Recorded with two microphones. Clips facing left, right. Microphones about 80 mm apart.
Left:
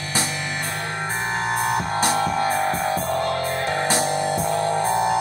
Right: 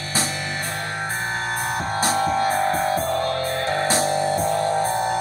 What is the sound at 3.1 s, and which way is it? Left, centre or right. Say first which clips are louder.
Music: even; left.